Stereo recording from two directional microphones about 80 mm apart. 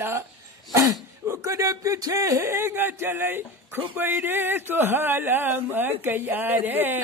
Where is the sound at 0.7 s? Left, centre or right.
Right.